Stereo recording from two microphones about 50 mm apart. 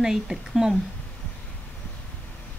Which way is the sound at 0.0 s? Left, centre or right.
Centre.